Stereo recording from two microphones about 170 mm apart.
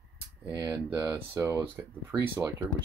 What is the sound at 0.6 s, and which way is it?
Speech, 20° right (ahead or behind).